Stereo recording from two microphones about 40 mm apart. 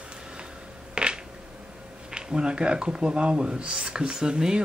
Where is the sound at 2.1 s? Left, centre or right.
Centre.